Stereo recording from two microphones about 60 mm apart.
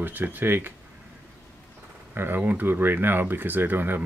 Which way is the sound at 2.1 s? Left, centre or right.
Right.